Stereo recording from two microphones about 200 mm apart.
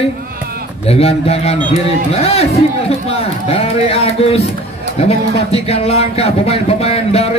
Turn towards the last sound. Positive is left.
turn(degrees=30)  # may be behind; listen again after turning